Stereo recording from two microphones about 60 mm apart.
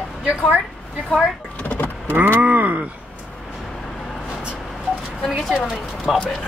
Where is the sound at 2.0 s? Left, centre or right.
Right.